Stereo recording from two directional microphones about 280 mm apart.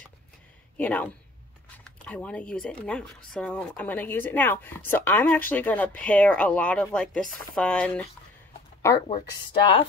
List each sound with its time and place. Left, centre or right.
0.7 s speech: centre
9.1 s speech: centre